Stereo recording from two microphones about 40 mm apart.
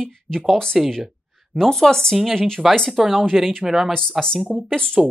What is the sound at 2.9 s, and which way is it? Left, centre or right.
Speech, centre.